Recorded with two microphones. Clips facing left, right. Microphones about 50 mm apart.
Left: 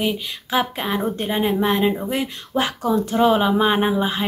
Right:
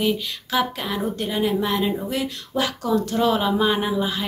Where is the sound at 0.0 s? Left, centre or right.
Left.